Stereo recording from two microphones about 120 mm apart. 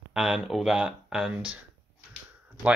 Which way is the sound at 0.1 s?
5° right (ahead or behind).